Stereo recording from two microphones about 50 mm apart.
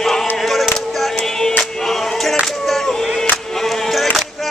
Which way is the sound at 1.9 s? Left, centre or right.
Centre.